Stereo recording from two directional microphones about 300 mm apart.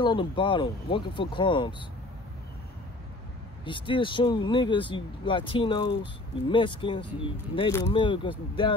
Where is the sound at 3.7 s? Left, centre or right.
Centre.